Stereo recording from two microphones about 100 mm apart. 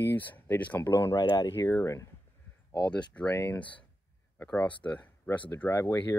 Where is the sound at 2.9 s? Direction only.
10° left (ahead or behind).